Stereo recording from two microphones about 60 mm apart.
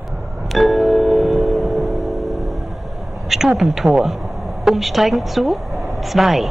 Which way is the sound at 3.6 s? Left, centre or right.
Centre.